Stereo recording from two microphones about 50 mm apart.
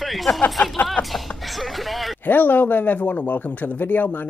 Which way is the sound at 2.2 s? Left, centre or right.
Left.